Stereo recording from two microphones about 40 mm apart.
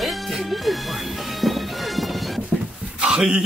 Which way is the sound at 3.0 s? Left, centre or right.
Centre.